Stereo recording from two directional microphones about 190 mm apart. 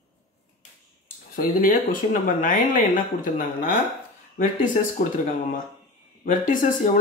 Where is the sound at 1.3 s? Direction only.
45° left (ahead or behind).